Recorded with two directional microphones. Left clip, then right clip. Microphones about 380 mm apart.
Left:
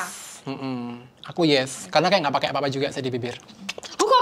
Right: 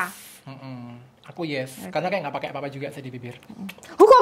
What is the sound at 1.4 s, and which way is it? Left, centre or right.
Speech, left.